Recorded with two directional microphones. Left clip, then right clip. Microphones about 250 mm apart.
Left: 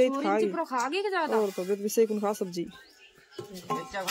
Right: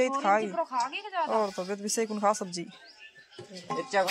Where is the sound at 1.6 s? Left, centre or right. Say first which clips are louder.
Left 6 dB; centre.